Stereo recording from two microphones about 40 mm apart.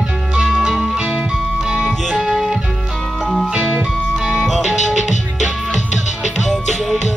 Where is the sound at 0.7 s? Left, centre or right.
Centre.